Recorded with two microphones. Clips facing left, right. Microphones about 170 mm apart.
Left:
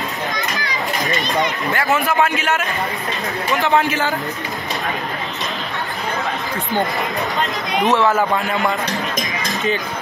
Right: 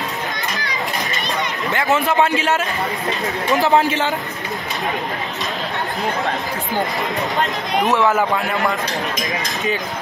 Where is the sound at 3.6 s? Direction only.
30° right (ahead or behind).